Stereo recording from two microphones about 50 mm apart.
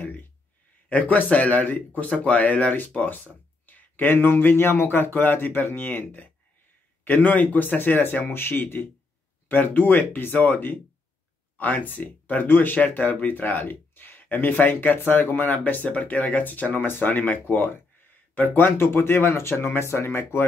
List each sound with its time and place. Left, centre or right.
0.8 s speech: left
12.8 s speech: left